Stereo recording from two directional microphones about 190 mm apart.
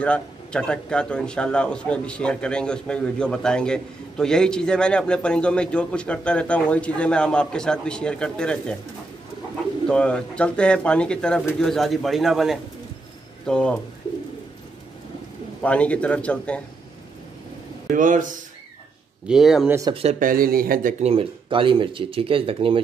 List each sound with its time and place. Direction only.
0.0 s a man's voice: 5° left (ahead or behind)
9.8 s a man's voice: 5° left (ahead or behind)
15.6 s a man's voice: 5° left (ahead or behind)
17.8 s speech: 45° right (ahead or behind)
19.2 s a man's voice: centre (ahead or behind)
19.9 s speech: 30° right (ahead or behind)
20.2 s speech: 50° right (ahead or behind)
21.0 s speech: 30° right (ahead or behind)